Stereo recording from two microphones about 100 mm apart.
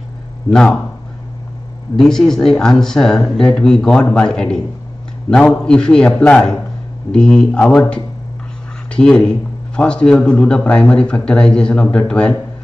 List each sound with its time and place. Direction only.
0.5 s speech: 5° left (ahead or behind)
2.0 s speech: 5° left (ahead or behind)
8.9 s speech: 10° left (ahead or behind)